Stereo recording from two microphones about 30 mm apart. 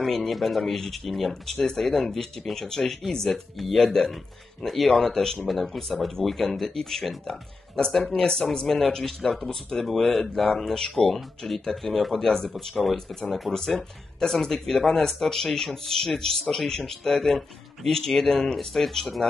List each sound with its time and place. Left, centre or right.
0.0 s speech: centre
1.8 s speech: centre
3.3 s speech: centre
3.8 s speech: centre
4.6 s speech: centre
5.5 s speech: centre; by 8.5 s left
8.6 s speech: centre
10.1 s speech: centre
13.5 s speech: centre
14.4 s speech: left